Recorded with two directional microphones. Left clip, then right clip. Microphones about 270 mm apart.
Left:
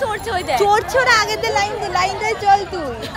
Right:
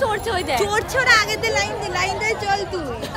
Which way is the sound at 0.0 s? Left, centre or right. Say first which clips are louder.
Even; centre.